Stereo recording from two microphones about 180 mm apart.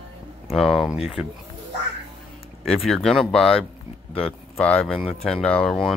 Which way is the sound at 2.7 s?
Centre (ahead or behind).